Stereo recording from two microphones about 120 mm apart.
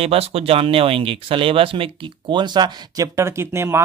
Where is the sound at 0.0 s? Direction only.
55° right (ahead or behind).